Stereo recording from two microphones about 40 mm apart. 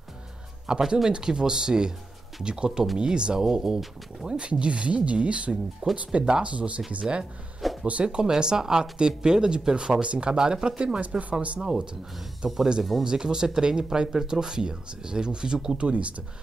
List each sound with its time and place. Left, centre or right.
0.7 s speech: centre
10.3 s speech: centre
11.0 s speech: right
11.6 s speech: right